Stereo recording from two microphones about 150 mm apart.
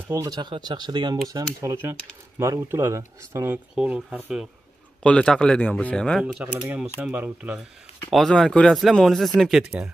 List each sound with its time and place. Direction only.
0.1 s speech: 20° right (ahead or behind); by 4.5 s 5° right (ahead or behind)
5.0 s speech: 5° left (ahead or behind)
6.2 s speech: 10° right (ahead or behind)